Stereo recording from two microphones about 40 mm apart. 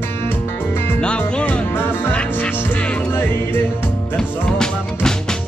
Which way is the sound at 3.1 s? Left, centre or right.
Left.